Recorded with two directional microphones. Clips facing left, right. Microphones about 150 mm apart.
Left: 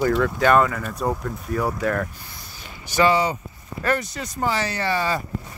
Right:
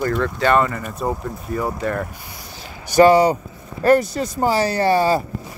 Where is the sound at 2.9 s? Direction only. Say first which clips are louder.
Right 7 dB; 40° right (ahead or behind).